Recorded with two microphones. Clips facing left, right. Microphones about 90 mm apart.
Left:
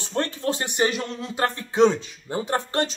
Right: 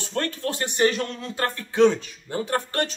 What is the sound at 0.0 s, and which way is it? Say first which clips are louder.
Speech: left 1 dB; 20° left (ahead or behind).